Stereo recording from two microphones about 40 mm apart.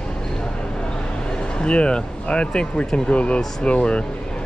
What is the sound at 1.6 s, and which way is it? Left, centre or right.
Speech, left.